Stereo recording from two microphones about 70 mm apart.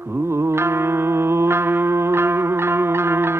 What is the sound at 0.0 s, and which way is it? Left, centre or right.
Music, right.